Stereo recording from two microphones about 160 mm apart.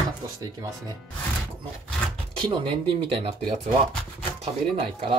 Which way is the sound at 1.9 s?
5° left (ahead or behind).